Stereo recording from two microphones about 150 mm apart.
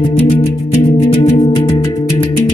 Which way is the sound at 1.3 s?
40° left (ahead or behind).